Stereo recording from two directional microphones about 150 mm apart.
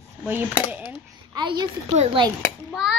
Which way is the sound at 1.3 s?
30° right (ahead or behind).